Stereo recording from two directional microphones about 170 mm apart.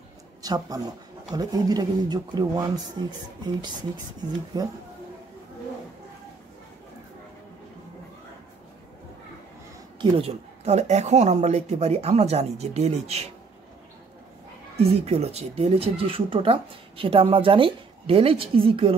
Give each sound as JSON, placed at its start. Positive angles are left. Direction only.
{"t": 0.4, "sound": "speech", "side_deg": -20}
{"t": 9.9, "sound": "speech", "side_deg": -35}
{"t": 14.8, "sound": "speech", "side_deg": -35}